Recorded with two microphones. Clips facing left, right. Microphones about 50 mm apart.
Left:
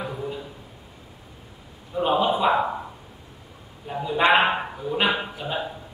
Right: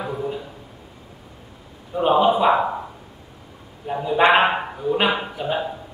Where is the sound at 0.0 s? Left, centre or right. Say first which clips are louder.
Right 4 dB; centre.